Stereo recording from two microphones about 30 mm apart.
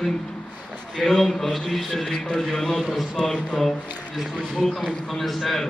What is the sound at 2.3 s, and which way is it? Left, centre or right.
Speech, centre.